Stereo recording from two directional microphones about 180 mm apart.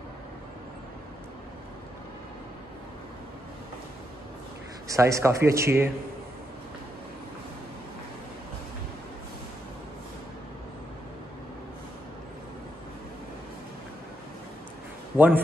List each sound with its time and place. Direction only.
4.8 s speech: 15° right (ahead or behind)
15.1 s a man's voice: 10° right (ahead or behind)